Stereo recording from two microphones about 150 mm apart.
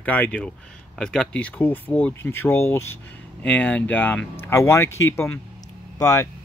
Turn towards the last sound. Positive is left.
turn(degrees=20)  # may be behind; listen again after turning